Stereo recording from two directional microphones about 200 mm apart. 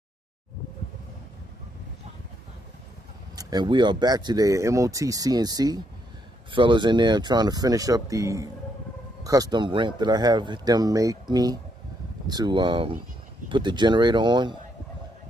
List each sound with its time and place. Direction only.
3.3 s speech: 20° right (ahead or behind)